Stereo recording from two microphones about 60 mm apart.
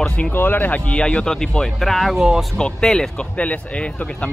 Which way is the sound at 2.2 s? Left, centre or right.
Centre.